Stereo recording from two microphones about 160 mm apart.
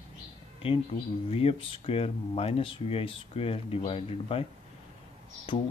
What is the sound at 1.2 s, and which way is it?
Speech, 35° left (ahead or behind).